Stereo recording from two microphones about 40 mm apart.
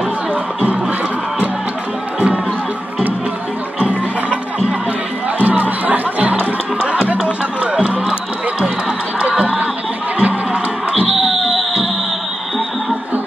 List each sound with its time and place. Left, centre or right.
0.3 s music: right
2.1 s music: right
3.8 s music: right
5.4 s music: right
9.4 s a sound: right
10.1 s music: right
11.1 s a sound: centre